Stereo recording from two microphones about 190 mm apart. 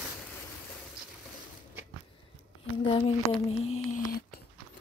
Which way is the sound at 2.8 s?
30° left (ahead or behind).